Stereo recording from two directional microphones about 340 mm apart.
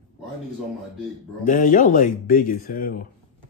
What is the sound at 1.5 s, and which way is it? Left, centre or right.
Speech, left.